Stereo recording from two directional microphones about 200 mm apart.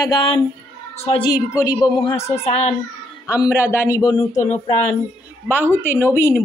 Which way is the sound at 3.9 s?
20° left (ahead or behind).